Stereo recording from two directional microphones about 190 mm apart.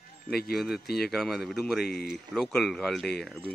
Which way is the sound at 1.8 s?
55° left (ahead or behind).